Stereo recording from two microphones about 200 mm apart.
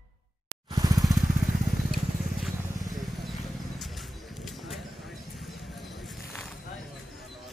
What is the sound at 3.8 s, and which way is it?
Clip-clop, centre (ahead or behind).